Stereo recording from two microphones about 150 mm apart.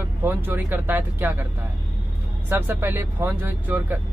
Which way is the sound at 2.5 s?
15° right (ahead or behind).